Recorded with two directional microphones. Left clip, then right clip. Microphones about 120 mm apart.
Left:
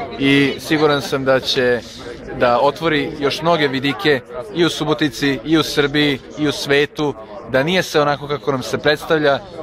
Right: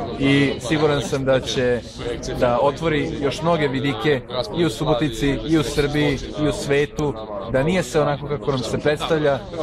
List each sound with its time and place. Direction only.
0.2 s a man's voice: 45° left (ahead or behind)